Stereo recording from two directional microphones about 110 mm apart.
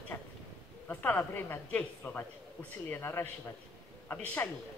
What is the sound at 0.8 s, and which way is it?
A woman's voice, 15° left (ahead or behind).